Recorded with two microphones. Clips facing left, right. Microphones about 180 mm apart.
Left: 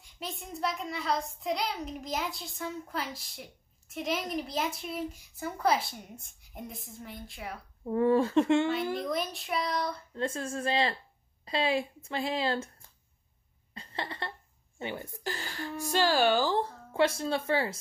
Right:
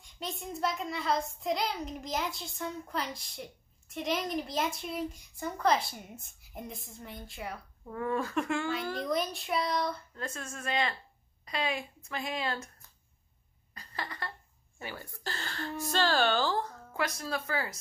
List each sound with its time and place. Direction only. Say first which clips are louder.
0.0 s speech: right 1 dB; centre (ahead or behind)
7.8 s speech: left 8 dB; 30° left (ahead or behind)
8.9 s speech: even; centre (ahead or behind)
10.1 s speech: left 8 dB; 30° left (ahead or behind)
13.7 s a sound: left 3 dB; 25° left (ahead or behind)
14.8 s speech: left 5 dB; 20° left (ahead or behind)
16.5 s speech: left 5 dB; 30° left (ahead or behind)